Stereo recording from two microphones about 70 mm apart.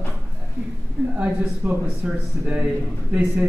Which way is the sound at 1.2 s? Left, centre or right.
Centre.